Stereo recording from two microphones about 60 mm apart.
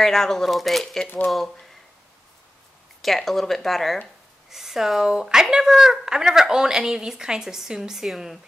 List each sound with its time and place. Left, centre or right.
0.0 s speech: centre
3.0 s a woman's voice: centre